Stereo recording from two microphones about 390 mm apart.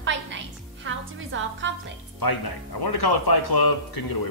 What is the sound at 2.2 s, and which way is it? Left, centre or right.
Speech, left.